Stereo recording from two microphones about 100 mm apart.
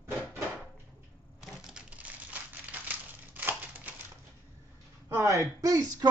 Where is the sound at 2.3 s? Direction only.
15° right (ahead or behind).